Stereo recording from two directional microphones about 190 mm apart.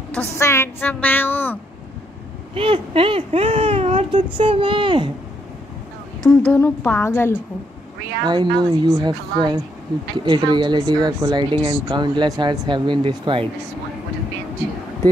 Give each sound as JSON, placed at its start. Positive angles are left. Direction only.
{"t": 0.1, "sound": "a woman's voice", "side_deg": 10}
{"t": 2.5, "sound": "speech", "side_deg": -30}
{"t": 4.4, "sound": "speech", "side_deg": -25}
{"t": 6.2, "sound": "a woman's voice", "side_deg": 5}
{"t": 8.2, "sound": "speech", "side_deg": -25}